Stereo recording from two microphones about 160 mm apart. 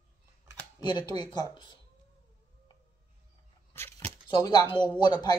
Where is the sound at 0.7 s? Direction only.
25° left (ahead or behind).